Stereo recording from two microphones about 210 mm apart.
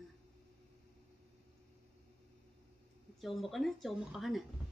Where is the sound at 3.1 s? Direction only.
Centre (ahead or behind).